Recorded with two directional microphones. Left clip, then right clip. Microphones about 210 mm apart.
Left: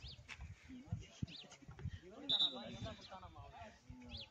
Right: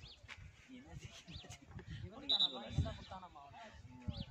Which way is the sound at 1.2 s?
30° left (ahead or behind).